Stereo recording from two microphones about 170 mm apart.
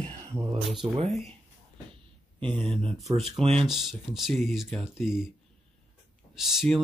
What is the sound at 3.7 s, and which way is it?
Speech, centre (ahead or behind).